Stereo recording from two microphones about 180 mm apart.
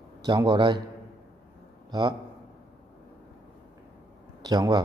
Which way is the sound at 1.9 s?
20° right (ahead or behind).